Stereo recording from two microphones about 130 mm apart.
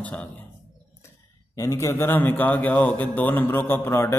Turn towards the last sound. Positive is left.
turn(degrees=20)  # may be behind; listen again after turning